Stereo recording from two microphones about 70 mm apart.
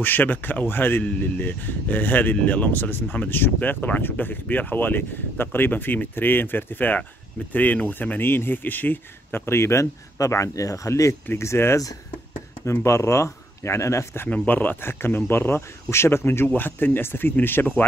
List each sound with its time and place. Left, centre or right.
0.0 s speech: left
14.3 s speech: left